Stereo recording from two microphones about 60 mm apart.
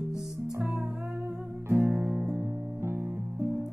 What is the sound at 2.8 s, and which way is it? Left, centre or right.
Music, right.